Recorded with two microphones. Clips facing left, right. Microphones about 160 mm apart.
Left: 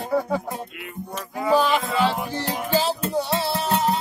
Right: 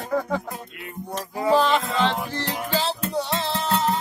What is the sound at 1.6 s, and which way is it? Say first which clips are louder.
Music: even; centre (ahead or behind).